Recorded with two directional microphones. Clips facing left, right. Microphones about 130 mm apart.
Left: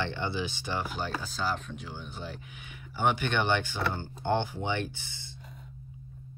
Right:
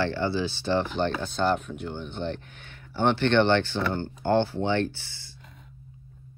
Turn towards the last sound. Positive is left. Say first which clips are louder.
# right 7 dB
turn(degrees=20)  # may be behind; listen again after turning